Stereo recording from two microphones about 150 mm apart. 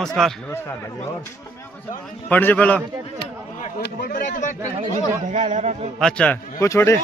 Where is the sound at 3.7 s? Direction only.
75° left (ahead or behind); by 4.6 s 60° left (ahead or behind).